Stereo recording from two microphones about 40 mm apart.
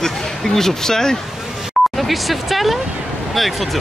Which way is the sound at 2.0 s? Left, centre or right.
Centre.